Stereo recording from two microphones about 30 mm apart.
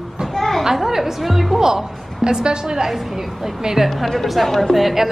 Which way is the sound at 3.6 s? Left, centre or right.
Centre.